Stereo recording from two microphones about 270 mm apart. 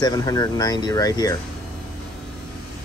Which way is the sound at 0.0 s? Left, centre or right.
Centre.